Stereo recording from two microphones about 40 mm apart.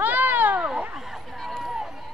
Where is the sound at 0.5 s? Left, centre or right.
Right.